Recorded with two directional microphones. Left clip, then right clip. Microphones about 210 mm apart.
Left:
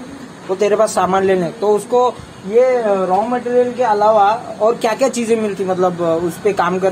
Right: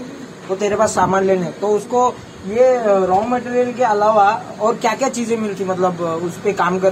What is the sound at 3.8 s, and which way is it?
Speech, 25° left (ahead or behind).